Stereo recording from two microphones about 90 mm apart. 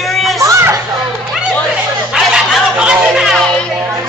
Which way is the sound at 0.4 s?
35° right (ahead or behind).